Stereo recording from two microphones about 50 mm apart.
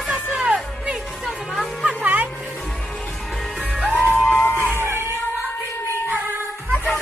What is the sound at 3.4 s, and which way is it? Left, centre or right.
Music, centre.